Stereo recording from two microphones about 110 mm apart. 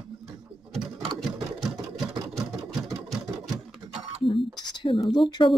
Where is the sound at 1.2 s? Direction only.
5° right (ahead or behind).